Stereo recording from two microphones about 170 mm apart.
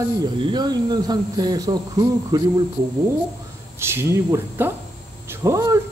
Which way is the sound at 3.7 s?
15° right (ahead or behind).